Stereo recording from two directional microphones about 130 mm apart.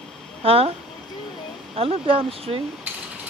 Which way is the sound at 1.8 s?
45° right (ahead or behind).